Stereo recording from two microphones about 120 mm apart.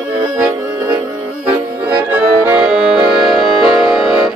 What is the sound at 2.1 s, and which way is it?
Accordion, 15° right (ahead or behind).